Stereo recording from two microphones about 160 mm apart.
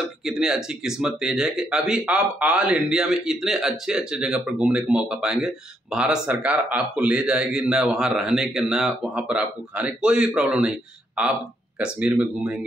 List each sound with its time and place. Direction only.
0.2 s speech: 5° right (ahead or behind)